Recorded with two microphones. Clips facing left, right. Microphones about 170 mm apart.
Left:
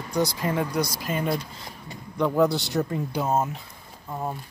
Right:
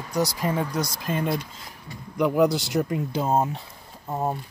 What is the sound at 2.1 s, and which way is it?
Speech, 10° right (ahead or behind).